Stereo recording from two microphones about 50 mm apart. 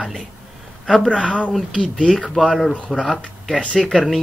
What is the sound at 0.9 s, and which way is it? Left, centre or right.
Speech, centre.